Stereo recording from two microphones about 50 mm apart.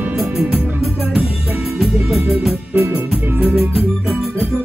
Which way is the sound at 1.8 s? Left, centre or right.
Centre.